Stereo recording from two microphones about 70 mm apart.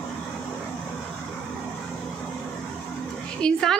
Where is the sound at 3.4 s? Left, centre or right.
Centre.